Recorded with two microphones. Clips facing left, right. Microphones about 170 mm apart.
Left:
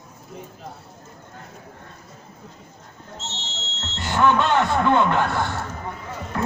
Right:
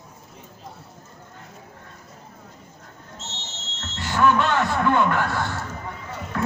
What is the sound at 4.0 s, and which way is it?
A man's voice, 20° left (ahead or behind).